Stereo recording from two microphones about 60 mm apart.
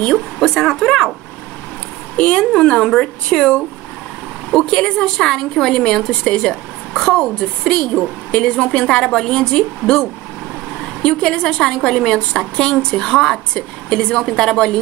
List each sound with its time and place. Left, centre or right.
0.4 s a woman's voice: centre
2.1 s a woman's voice: centre